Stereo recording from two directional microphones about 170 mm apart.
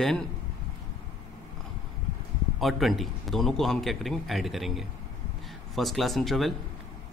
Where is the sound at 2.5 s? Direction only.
Centre (ahead or behind).